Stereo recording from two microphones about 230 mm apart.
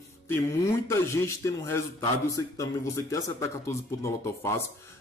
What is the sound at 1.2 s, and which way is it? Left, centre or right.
Speech, centre.